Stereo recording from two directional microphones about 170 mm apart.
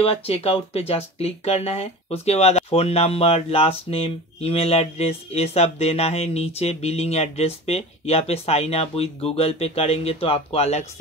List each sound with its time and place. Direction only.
0.0 s speech: 35° left (ahead or behind)